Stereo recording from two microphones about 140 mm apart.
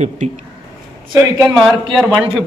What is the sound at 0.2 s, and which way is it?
Speech, 60° right (ahead or behind).